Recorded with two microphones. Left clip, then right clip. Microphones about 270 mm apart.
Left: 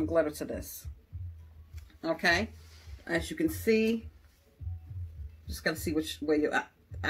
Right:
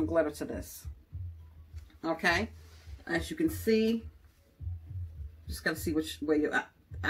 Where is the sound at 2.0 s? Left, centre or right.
Centre.